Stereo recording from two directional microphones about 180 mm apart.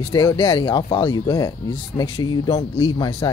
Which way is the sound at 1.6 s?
25° left (ahead or behind).